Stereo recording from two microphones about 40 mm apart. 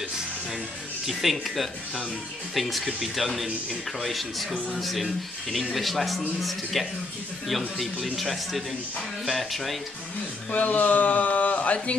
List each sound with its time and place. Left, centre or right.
1.0 s a man's voice: centre
10.5 s speech: left